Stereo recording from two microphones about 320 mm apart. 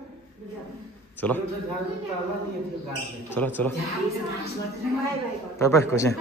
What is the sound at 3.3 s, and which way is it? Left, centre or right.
Speech, centre.